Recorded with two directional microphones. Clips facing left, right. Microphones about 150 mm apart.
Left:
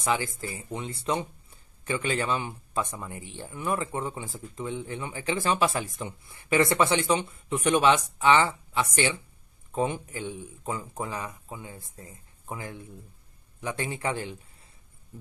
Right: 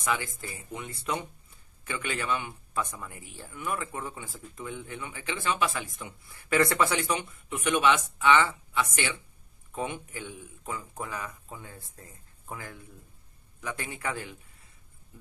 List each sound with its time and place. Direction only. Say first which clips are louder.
0.0 s a man's voice: left 3 dB; 30° left (ahead or behind)
6.2 s a man's voice: left 2 dB; 20° left (ahead or behind)